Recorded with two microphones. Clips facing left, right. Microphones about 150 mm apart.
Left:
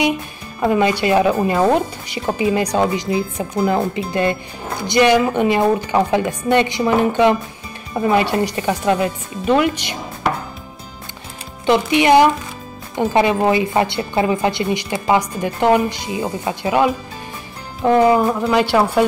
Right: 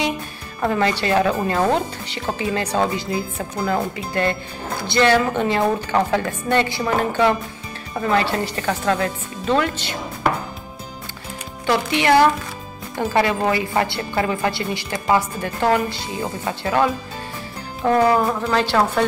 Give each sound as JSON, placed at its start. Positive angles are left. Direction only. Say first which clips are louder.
{"t": 0.7, "sound": "speech", "louder": "left 4 dB", "side_deg": 15}
{"t": 11.6, "sound": "a woman's voice", "louder": "left 5 dB", "side_deg": 20}